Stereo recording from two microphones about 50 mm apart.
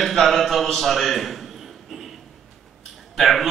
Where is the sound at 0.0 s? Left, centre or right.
Centre.